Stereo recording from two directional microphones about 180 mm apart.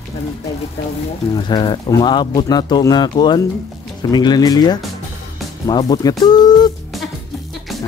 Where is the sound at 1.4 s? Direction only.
25° left (ahead or behind).